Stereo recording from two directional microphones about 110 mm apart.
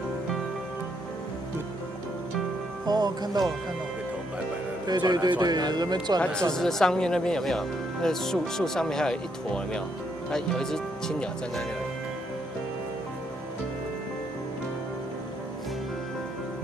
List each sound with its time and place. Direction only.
2.9 s speech: 40° right (ahead or behind)
4.8 s speech: 40° right (ahead or behind)
6.5 s speech: 5° left (ahead or behind)